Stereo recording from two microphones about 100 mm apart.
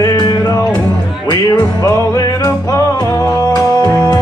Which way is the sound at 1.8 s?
35° left (ahead or behind).